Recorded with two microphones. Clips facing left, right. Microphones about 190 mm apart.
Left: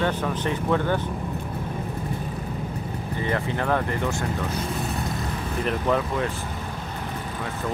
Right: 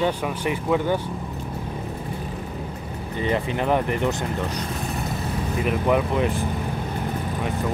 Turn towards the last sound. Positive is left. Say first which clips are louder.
# right 4 dB
turn(degrees=-15)  # may be behind; listen again after turning